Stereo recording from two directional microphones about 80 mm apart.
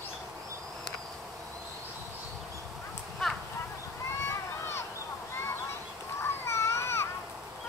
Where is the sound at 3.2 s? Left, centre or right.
Centre.